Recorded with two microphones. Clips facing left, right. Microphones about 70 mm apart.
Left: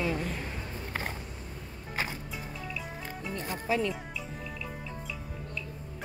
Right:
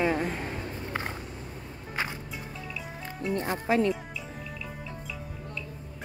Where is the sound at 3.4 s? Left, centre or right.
Right.